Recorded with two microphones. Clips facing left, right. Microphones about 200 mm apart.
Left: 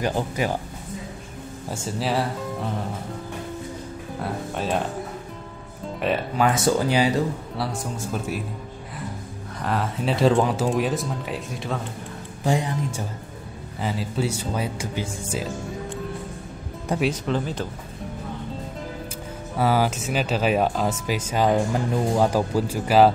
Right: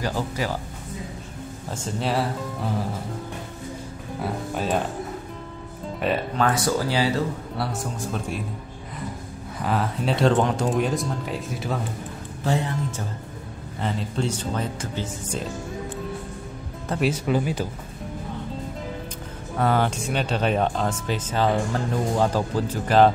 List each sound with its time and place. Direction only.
0.0 s speech: 20° left (ahead or behind)
1.7 s speech: centre (ahead or behind)
4.2 s speech: centre (ahead or behind)
5.9 s speech: centre (ahead or behind)
6.5 s speech: 20° left (ahead or behind)
7.5 s speech: centre (ahead or behind)
9.6 s speech: centre (ahead or behind)
12.4 s speech: 15° left (ahead or behind)
17.0 s speech: 10° right (ahead or behind)
19.5 s speech: 5° left (ahead or behind)